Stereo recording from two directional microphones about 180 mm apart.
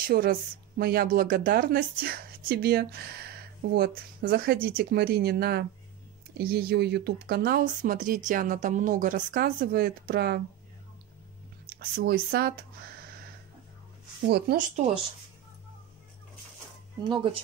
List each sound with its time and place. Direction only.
0.0 s a woman's voice: 55° right (ahead or behind)
11.7 s a woman's voice: 60° right (ahead or behind)
14.2 s a woman's voice: 65° right (ahead or behind)
17.1 s speech: 30° right (ahead or behind)